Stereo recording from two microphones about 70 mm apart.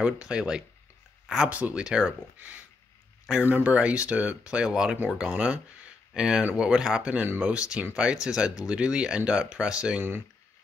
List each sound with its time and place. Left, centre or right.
0.0 s speech: centre